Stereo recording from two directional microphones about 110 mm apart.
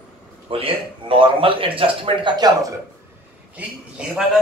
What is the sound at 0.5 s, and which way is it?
A man's voice, 55° right (ahead or behind).